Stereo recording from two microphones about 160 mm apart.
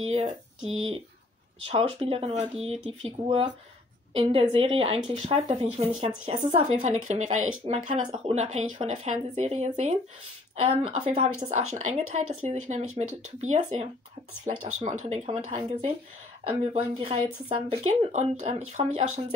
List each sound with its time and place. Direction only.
0.0 s speech: 40° right (ahead or behind)